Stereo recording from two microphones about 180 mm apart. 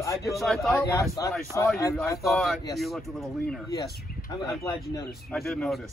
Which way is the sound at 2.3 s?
Centre (ahead or behind).